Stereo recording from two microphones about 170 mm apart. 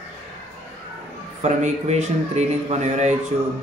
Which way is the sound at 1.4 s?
45° right (ahead or behind).